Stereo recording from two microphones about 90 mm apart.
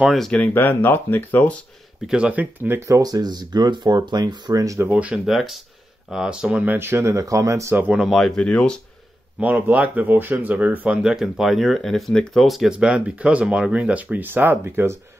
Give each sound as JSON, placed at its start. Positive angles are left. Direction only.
{"t": 0.3, "sound": "speech", "side_deg": 20}
{"t": 2.0, "sound": "speech", "side_deg": -10}
{"t": 2.9, "sound": "speech", "side_deg": -45}
{"t": 4.7, "sound": "speech", "side_deg": -15}
{"t": 5.2, "sound": "speech", "side_deg": 0}
{"t": 6.7, "sound": "speech", "side_deg": -30}
{"t": 7.9, "sound": "speech", "side_deg": 0}
{"t": 9.4, "sound": "speech", "side_deg": -15}
{"t": 11.0, "sound": "speech", "side_deg": -5}
{"t": 12.7, "sound": "speech", "side_deg": -10}